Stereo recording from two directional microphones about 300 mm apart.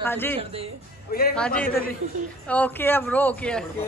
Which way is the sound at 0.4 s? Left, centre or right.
Centre.